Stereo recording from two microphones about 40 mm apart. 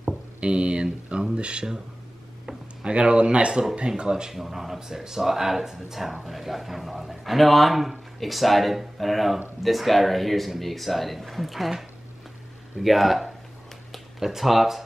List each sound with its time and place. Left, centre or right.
0.4 s speech: right
4.4 s a man's voice: centre